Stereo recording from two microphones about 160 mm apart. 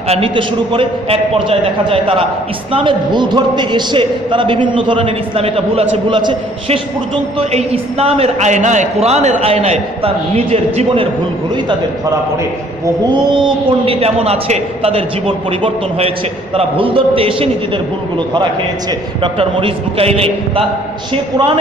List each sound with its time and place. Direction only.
0.1 s a man's voice: 35° right (ahead or behind)
12.8 s a man's voice: 30° right (ahead or behind)
19.2 s a man's voice: 35° right (ahead or behind)